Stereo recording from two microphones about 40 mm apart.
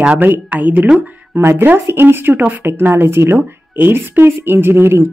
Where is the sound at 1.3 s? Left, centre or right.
Right.